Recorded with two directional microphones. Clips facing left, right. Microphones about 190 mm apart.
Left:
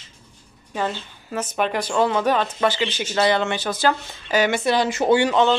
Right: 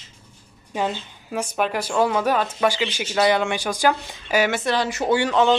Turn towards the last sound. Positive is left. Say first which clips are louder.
# left 3 dB
turn(degrees=25)  # may be behind; listen again after turning